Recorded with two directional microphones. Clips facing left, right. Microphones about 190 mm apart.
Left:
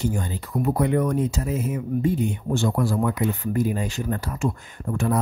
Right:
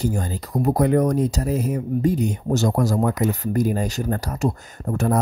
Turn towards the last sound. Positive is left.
turn(degrees=-40)  # may be behind; listen again after turning